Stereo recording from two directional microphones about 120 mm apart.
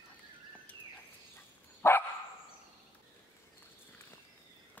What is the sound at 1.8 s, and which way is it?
Dog, 20° left (ahead or behind).